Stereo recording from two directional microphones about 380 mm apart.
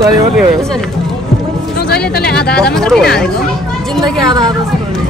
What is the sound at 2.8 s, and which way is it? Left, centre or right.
Speech, centre.